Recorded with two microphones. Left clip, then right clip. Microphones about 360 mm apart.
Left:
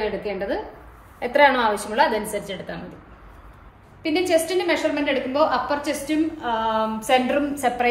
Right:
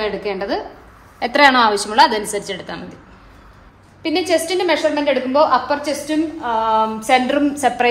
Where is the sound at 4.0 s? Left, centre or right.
Centre.